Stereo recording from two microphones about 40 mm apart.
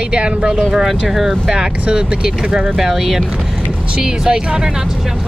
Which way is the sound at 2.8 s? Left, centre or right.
Centre.